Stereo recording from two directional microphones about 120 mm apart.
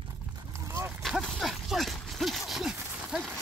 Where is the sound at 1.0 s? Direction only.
Centre (ahead or behind).